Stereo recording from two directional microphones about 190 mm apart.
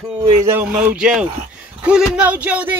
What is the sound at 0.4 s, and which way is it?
Speech, 10° right (ahead or behind).